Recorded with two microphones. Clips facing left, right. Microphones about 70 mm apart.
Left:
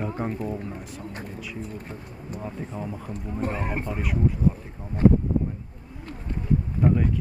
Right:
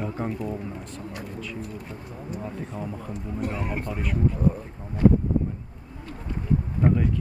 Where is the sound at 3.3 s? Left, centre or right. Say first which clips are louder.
Left 1 dB; left.